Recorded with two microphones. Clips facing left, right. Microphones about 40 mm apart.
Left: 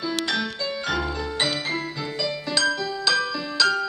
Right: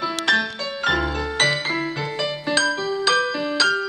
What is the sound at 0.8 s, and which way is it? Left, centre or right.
Music, right.